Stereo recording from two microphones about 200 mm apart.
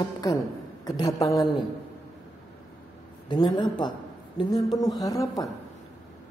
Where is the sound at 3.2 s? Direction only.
20° left (ahead or behind).